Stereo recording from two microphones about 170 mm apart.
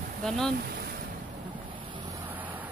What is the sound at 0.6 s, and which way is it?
Boat, 65° right (ahead or behind).